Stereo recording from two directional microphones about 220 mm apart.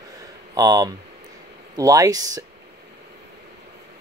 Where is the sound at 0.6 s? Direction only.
15° right (ahead or behind).